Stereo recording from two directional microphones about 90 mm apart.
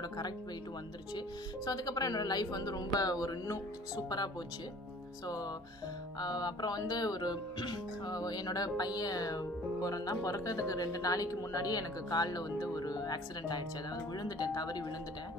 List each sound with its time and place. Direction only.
1.7 s speech: 45° left (ahead or behind)